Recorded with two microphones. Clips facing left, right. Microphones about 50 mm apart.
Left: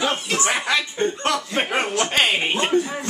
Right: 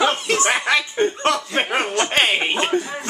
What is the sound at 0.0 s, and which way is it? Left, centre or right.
Chuckle, right.